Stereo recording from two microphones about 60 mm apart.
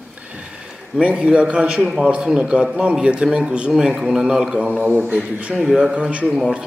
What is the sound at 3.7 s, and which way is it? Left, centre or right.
A man's voice, centre.